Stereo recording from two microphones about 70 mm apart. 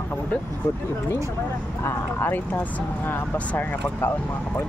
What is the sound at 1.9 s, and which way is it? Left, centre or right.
Speech, left.